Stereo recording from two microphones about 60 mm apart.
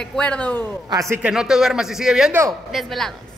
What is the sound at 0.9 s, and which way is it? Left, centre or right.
Speech, right.